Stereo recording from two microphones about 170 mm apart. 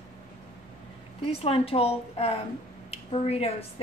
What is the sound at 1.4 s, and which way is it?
A woman's voice, 35° left (ahead or behind).